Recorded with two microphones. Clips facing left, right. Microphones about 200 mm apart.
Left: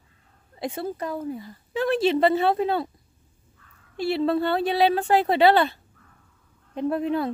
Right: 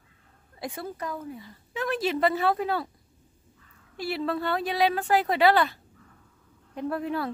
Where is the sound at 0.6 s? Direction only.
25° left (ahead or behind).